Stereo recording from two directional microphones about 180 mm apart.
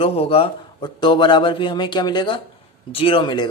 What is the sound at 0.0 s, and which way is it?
A man's voice, 35° left (ahead or behind).